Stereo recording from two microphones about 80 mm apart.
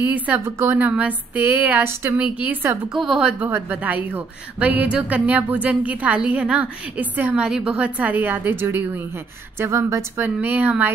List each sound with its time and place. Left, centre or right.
0.0 s a woman's voice: right
2.1 s a woman's voice: centre
2.9 s a woman's voice: centre
3.4 s a woman's voice: right
10.2 s a woman's voice: right